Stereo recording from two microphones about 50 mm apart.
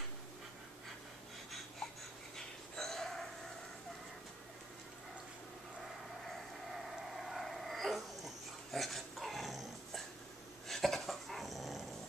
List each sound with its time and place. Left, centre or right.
2.3 s dog: centre
6.2 s a sound: centre
8.7 s dog: centre